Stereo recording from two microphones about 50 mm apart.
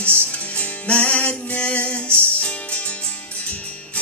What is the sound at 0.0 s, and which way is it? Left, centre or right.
Music, left.